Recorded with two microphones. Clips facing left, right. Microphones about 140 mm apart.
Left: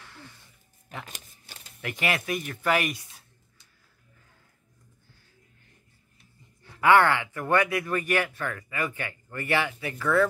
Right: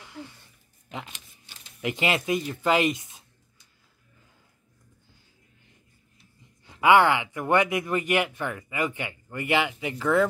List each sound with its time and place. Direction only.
0.0 s a sound: 15° right (ahead or behind)
1.4 s speech: 20° right (ahead or behind)
6.6 s a man's voice: 15° right (ahead or behind)